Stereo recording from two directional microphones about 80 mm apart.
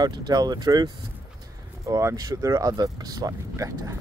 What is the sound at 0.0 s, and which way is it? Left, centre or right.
Speech, right.